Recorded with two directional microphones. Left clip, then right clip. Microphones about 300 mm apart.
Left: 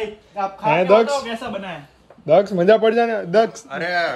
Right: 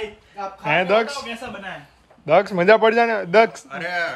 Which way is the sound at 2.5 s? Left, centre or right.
Centre.